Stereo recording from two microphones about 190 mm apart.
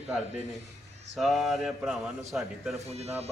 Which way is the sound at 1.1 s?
Centre (ahead or behind).